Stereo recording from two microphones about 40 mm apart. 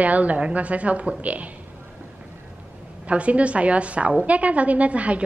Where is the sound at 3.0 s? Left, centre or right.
Right.